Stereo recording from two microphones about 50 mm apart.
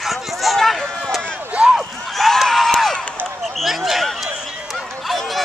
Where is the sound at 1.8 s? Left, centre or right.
Centre.